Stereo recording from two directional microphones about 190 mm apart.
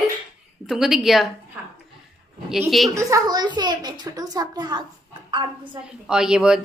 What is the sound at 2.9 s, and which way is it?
A woman's voice, 15° right (ahead or behind).